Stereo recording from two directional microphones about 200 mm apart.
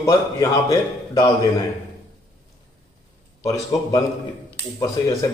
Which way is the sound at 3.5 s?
15° left (ahead or behind).